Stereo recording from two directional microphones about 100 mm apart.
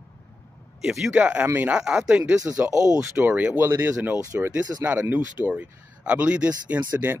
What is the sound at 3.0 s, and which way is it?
Speech, 15° right (ahead or behind).